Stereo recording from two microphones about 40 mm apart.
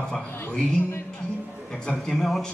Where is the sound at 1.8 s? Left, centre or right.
Centre.